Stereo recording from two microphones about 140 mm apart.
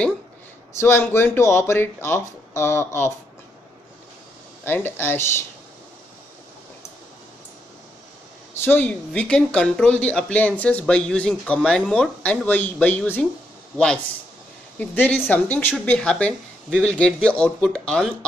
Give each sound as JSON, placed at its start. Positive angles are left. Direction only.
{"t": 0.7, "sound": "speech", "side_deg": 20}
{"t": 4.6, "sound": "speech", "side_deg": 15}
{"t": 8.6, "sound": "speech", "side_deg": 10}
{"t": 14.8, "sound": "speech", "side_deg": 10}